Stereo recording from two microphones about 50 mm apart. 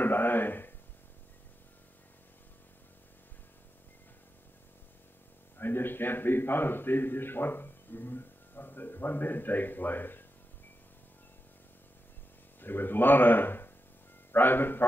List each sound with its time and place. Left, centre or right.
0.0 s a sound: left
5.6 s a man's voice: left
12.5 s a man's voice: left